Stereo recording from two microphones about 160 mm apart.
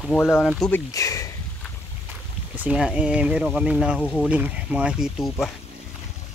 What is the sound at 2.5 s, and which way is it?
Speech, 5° right (ahead or behind).